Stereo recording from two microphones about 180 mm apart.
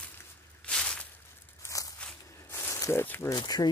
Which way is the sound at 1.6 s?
20° left (ahead or behind).